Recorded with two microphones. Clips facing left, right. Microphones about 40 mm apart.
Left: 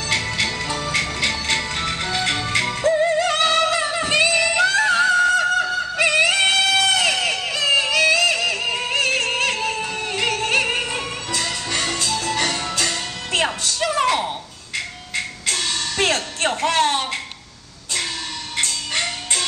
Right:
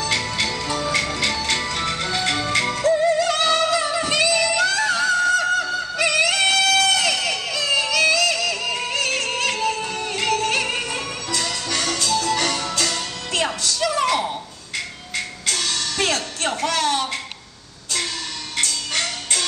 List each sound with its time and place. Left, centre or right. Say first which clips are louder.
0.0 s music: left 1 dB; left
1.8 s music: even; centre
2.8 s music: even; left
5.9 s a sound: left 2 dB; left
9.8 s music: even; left
18.6 s music: left 1 dB; left